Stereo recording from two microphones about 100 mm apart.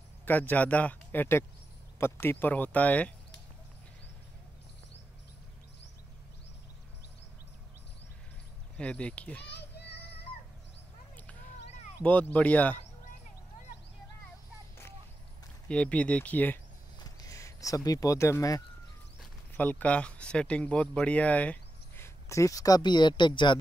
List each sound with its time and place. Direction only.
0.2 s speech: 20° left (ahead or behind)
8.7 s speech: 10° left (ahead or behind)
12.0 s speech: 15° left (ahead or behind)
15.7 s speech: 10° left (ahead or behind)
17.0 s a sound: 35° left (ahead or behind)
19.5 s speech: 15° left (ahead or behind)
22.0 s a sound: 30° left (ahead or behind)
22.8 s speech: 50° left (ahead or behind)